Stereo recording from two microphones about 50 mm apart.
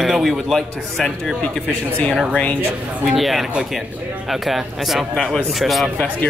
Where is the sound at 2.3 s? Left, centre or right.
Left.